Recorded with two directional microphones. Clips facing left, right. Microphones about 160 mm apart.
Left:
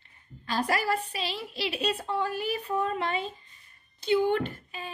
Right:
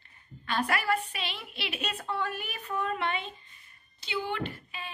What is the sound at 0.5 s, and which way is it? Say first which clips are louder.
Speech: left 1 dB; 35° left (ahead or behind).